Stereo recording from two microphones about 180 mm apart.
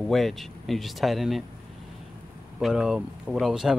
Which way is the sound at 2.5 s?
5° right (ahead or behind).